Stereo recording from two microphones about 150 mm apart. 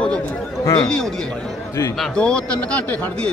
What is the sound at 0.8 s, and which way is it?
A man's voice, 5° left (ahead or behind).